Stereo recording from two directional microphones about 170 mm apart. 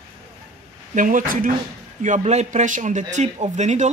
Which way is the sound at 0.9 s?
50° right (ahead or behind).